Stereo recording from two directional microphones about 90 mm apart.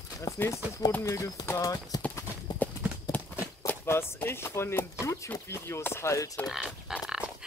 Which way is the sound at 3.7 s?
25° left (ahead or behind).